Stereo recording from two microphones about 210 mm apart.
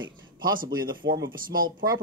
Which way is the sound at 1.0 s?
50° right (ahead or behind).